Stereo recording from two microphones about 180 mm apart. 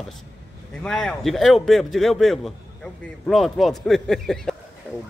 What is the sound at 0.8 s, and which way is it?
A man's voice, centre (ahead or behind).